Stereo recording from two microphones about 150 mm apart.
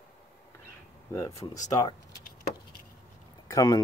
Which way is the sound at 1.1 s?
20° left (ahead or behind).